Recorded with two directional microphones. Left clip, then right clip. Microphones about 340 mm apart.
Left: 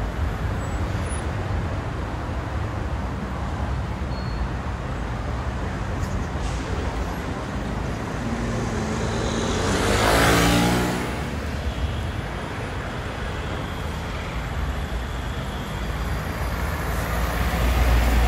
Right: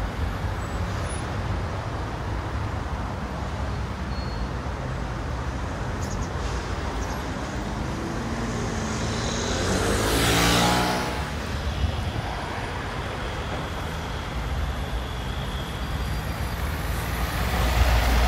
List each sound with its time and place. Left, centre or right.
9.1 s vehicle: centre